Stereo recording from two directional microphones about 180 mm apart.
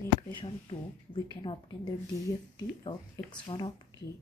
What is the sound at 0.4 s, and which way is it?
Speech, 25° left (ahead or behind).